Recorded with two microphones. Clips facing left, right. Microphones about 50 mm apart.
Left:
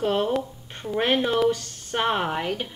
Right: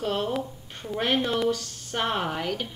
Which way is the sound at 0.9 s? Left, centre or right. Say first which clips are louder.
Left 3 dB; left.